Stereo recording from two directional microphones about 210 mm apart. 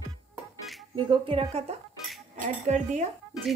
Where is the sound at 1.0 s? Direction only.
25° right (ahead or behind).